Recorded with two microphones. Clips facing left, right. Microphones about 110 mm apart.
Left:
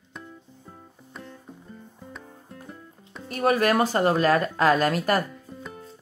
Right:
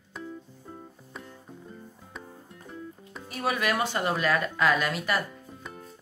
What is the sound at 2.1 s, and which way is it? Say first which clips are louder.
Music: right 1 dB; centre (ahead or behind).